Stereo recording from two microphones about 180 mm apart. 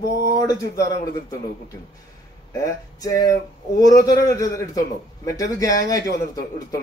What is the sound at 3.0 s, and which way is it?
Speech, 20° left (ahead or behind).